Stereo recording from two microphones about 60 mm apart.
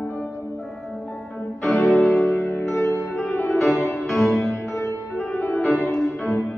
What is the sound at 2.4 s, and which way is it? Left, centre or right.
Music, left.